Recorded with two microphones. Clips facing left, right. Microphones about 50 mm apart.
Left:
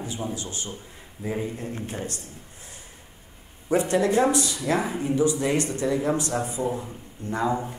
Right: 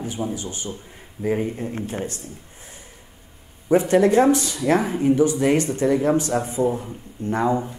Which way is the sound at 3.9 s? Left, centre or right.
Right.